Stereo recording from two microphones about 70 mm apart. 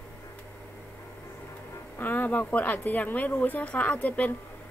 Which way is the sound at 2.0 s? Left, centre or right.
Left.